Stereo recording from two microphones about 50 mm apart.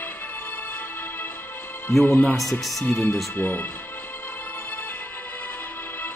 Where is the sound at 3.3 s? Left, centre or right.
Left.